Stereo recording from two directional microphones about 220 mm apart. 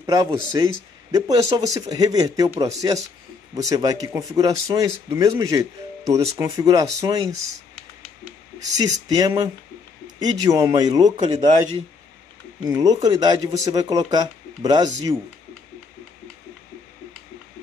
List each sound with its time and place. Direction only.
0.0 s a man's voice: 20° right (ahead or behind)
8.7 s a man's voice: 15° right (ahead or behind)
12.6 s speech: 15° right (ahead or behind)